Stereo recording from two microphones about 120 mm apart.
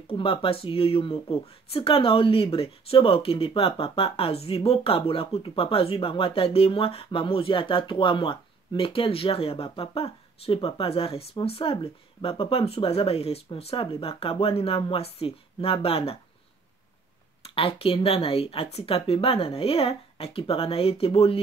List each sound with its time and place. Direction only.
0.0 s speech: 50° left (ahead or behind)
17.4 s speech: 50° left (ahead or behind)